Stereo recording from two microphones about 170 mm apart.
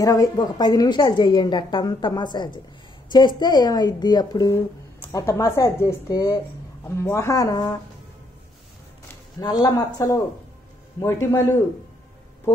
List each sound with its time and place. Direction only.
0.0 s a woman's voice: 20° left (ahead or behind)
9.4 s a woman's voice: 25° left (ahead or behind)